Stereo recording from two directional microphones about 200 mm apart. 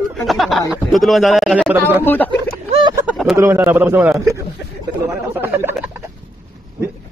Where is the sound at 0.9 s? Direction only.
Centre (ahead or behind).